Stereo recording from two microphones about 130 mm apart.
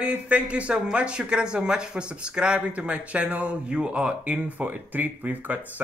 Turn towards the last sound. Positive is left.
turn(degrees=-15)  # may be behind; listen again after turning